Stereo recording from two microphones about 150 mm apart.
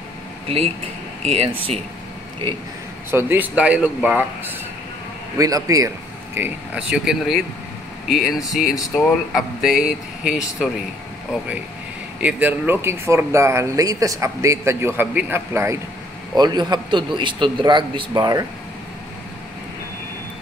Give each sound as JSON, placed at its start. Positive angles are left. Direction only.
{"t": 1.2, "sound": "speech", "side_deg": -40}
{"t": 3.1, "sound": "speech", "side_deg": -15}
{"t": 5.4, "sound": "a man's voice", "side_deg": -20}
{"t": 6.3, "sound": "speech", "side_deg": -10}
{"t": 12.2, "sound": "speech", "side_deg": -10}
{"t": 16.3, "sound": "a man's voice", "side_deg": -25}